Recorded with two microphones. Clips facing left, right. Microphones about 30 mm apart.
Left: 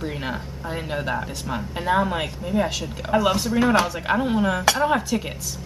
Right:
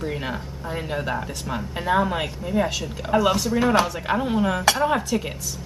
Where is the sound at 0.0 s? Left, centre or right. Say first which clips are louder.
Even; centre.